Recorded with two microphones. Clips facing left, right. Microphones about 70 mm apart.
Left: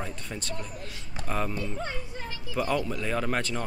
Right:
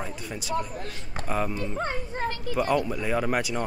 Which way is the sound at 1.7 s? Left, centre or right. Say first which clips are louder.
Right 5 dB; right.